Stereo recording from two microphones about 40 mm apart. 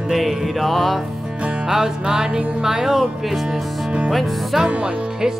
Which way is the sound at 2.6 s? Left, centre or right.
Centre.